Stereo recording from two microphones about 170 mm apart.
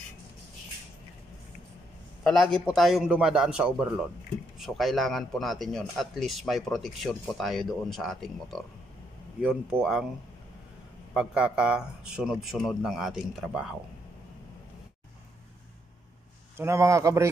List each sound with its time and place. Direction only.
2.2 s a man's voice: centre (ahead or behind)
11.1 s a man's voice: 5° right (ahead or behind)
16.5 s speech: 15° right (ahead or behind)